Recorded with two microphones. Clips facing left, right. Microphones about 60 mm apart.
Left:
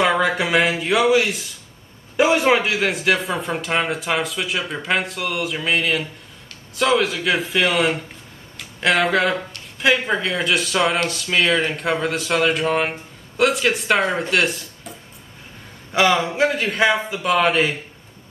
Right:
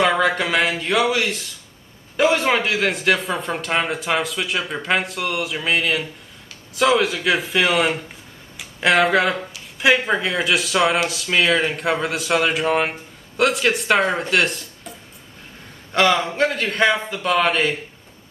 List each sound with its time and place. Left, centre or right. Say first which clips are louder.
0.0 s speech: even; centre